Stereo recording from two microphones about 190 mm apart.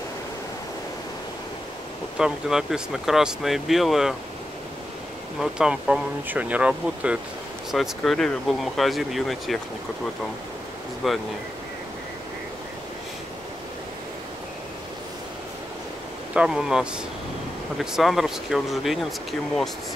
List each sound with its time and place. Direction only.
2.1 s speech: 5° right (ahead or behind)
5.4 s speech: 5° right (ahead or behind)
11.0 s speech: centre (ahead or behind)
16.3 s speech: 5° right (ahead or behind)